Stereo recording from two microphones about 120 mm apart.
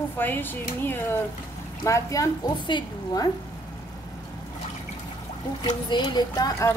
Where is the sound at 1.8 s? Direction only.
25° left (ahead or behind).